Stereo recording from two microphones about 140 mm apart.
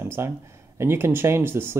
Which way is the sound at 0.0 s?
15° right (ahead or behind).